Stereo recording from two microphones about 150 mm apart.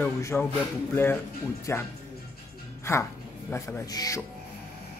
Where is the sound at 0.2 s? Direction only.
15° left (ahead or behind).